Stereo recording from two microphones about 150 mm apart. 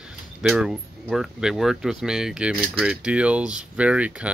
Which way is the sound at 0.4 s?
Centre (ahead or behind).